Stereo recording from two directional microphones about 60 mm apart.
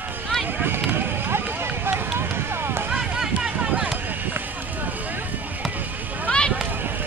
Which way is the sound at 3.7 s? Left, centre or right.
Centre.